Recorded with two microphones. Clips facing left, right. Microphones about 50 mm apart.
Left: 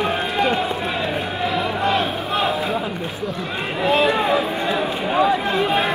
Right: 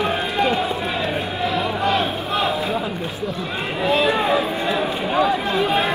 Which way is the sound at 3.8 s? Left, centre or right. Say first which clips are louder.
Left 1 dB; left.